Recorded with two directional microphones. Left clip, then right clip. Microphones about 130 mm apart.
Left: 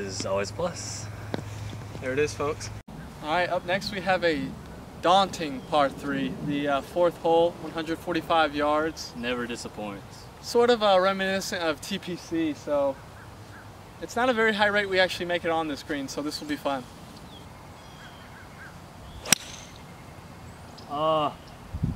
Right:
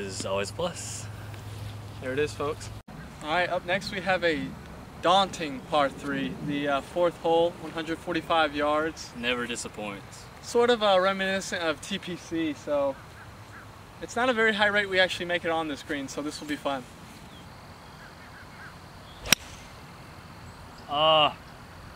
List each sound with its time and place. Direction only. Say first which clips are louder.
0.4 s speech: left 1 dB; 5° right (ahead or behind)
0.7 s speech: left 2 dB; 35° right (ahead or behind)
2.0 s speech: left 2 dB; 5° left (ahead or behind)
9.2 s speech: right 2 dB; 10° right (ahead or behind)
10.4 s speech: left 1 dB; 5° left (ahead or behind)
14.0 s speech: left 1 dB; 5° left (ahead or behind)
19.3 s whip: right 1 dB; centre (ahead or behind)
20.9 s speech: right 4 dB; 25° right (ahead or behind)